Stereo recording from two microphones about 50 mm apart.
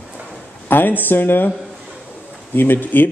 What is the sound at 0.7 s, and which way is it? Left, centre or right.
Speech, left.